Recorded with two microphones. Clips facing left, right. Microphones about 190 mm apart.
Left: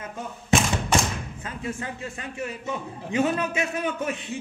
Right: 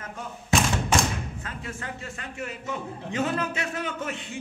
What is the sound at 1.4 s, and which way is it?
A man's voice, 20° left (ahead or behind).